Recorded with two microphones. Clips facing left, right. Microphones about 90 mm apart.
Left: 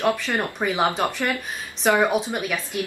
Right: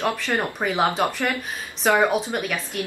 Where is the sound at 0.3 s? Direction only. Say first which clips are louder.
Right 1 dB; 15° right (ahead or behind).